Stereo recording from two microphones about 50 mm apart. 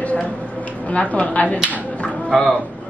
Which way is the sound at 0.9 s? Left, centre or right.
Left.